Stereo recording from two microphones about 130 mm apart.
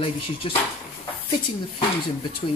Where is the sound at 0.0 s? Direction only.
45° left (ahead or behind).